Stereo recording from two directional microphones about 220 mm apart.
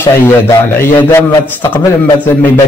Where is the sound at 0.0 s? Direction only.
10° left (ahead or behind).